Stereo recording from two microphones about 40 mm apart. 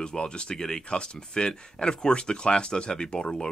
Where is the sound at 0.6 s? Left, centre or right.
Left.